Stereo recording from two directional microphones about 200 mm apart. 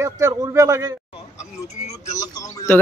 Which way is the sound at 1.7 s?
35° left (ahead or behind).